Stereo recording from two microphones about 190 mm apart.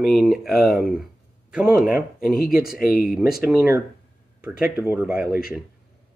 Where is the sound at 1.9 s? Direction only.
50° left (ahead or behind).